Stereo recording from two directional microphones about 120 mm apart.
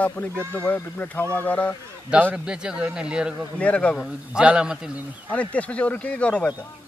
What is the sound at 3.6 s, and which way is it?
Speech, 10° left (ahead or behind).